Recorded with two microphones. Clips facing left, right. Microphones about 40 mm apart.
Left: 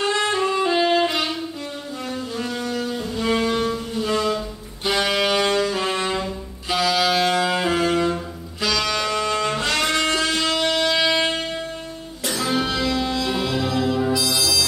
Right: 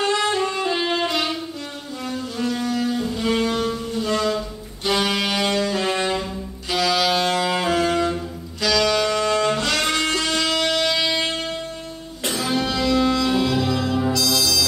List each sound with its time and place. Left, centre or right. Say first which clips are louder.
0.0 s saxophone: even; centre
1.0 s music: even; centre
6.7 s saxophone: even; centre
9.9 s music: left 1 dB; centre
12.4 s music: right 1 dB; centre